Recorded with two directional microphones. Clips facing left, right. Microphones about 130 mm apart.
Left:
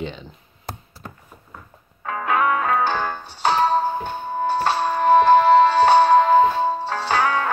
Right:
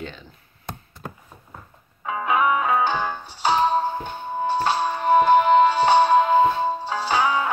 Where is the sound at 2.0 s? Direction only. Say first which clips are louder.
Even; 10° right (ahead or behind).